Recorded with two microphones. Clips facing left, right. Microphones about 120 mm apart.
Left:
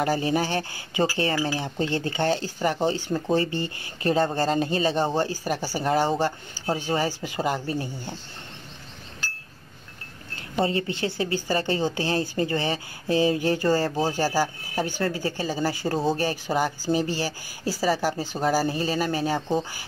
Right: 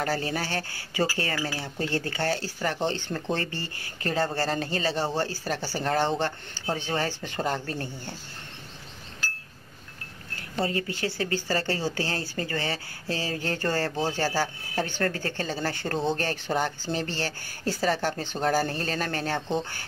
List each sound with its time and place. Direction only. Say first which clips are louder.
0.0 s speech: left 5 dB; 15° left (ahead or behind)
10.6 s speech: left 4 dB; 25° left (ahead or behind); by 19.9 s 10° left (ahead or behind)